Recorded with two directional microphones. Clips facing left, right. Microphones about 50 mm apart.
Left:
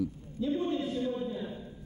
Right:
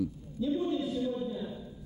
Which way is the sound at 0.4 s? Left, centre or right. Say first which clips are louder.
Even; left.